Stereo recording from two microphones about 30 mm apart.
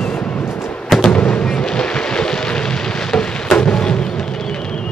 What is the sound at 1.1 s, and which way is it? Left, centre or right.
Fireworks, left.